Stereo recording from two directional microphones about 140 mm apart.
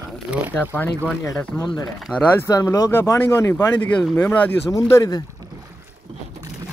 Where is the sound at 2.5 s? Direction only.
25° left (ahead or behind).